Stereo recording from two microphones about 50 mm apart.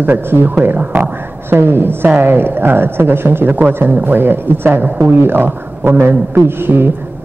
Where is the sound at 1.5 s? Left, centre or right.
Right.